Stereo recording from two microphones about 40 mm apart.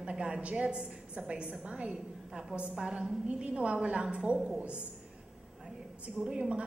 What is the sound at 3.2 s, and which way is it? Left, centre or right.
A woman's voice, right.